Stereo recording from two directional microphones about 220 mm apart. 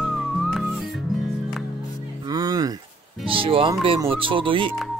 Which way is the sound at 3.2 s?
25° right (ahead or behind).